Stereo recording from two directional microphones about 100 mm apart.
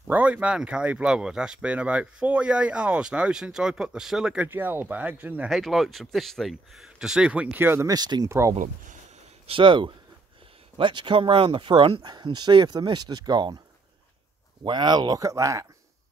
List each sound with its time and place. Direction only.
0.1 s speech: 15° right (ahead or behind)
4.5 s speech: 20° right (ahead or behind)
5.5 s speech: centre (ahead or behind)
7.5 s speech: 25° right (ahead or behind)
7.9 s speech: 40° right (ahead or behind)
8.3 s speech: 30° right (ahead or behind)
9.5 s speech: 55° right (ahead or behind)
14.6 s speech: 50° right (ahead or behind); by 15.6 s 35° right (ahead or behind)